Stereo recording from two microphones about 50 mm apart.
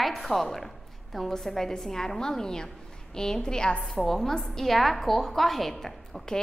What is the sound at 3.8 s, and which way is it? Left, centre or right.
A woman's voice, centre.